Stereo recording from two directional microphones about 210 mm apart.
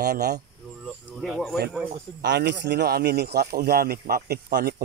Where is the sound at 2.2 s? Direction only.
55° right (ahead or behind).